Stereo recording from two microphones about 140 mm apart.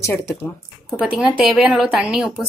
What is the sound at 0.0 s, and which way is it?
Speech, 20° left (ahead or behind).